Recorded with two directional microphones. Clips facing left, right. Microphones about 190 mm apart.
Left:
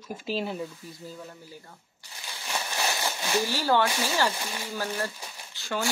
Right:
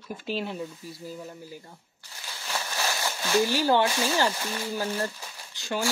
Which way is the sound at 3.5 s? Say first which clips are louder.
Right 2 dB; 15° right (ahead or behind).